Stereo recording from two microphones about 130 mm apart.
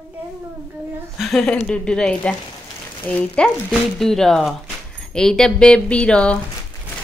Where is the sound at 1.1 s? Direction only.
Centre (ahead or behind).